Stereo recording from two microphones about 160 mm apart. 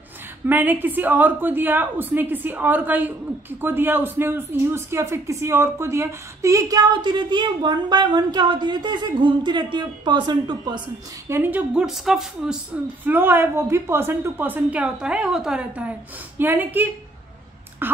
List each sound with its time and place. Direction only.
0.5 s a woman's voice: 10° right (ahead or behind)
11.2 s a woman's voice: 15° right (ahead or behind)
17.8 s a sound: 15° right (ahead or behind)